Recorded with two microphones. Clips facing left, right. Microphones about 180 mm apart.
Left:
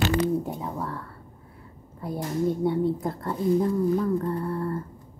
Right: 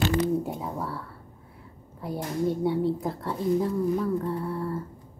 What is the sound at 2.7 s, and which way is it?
Speech, 5° right (ahead or behind).